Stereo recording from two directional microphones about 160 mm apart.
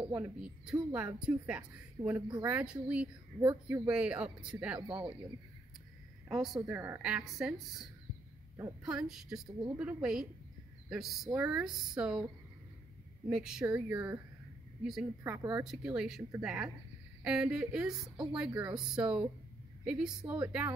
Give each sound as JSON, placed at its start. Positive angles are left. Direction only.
{"t": 0.1, "sound": "speech", "side_deg": -10}
{"t": 2.2, "sound": "speech", "side_deg": -30}
{"t": 2.5, "sound": "speech", "side_deg": -5}
{"t": 6.2, "sound": "a woman's voice", "side_deg": 0}
{"t": 6.6, "sound": "a woman's voice", "side_deg": -15}
{"t": 13.3, "sound": "speech", "side_deg": -5}
{"t": 15.2, "sound": "a woman's voice", "side_deg": -15}